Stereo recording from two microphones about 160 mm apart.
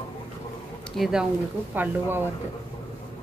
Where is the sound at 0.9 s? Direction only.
Centre (ahead or behind).